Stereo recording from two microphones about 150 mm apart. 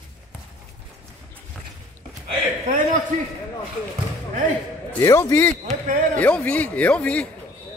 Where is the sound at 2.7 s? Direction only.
50° right (ahead or behind).